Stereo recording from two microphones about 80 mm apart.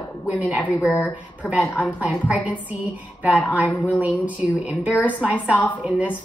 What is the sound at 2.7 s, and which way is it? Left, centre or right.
A woman's voice, centre.